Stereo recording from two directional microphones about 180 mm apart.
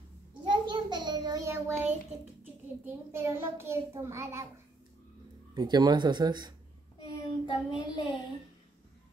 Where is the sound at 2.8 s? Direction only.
15° right (ahead or behind).